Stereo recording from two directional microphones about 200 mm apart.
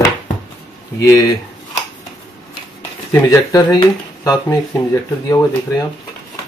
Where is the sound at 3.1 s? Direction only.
15° left (ahead or behind).